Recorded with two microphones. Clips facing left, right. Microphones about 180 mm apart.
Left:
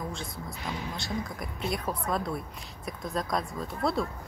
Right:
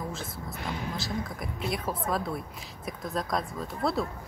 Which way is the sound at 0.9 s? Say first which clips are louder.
Right 1 dB; centre (ahead or behind).